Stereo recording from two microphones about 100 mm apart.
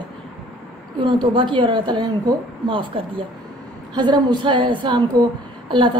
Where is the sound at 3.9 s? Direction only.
45° right (ahead or behind).